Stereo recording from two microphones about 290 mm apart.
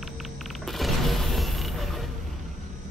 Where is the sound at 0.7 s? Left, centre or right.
Centre.